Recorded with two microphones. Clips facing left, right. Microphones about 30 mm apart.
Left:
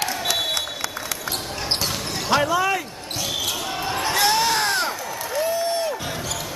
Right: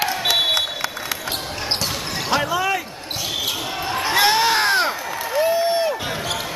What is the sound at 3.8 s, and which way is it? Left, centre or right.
Basketball bounce, centre.